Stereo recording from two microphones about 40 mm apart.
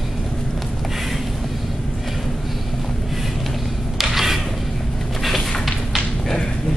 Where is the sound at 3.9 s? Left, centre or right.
Centre.